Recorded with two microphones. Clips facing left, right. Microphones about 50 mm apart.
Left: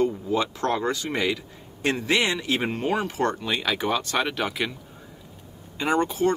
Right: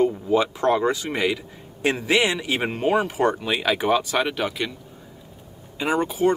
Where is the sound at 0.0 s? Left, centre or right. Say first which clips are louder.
Right 4 dB; centre.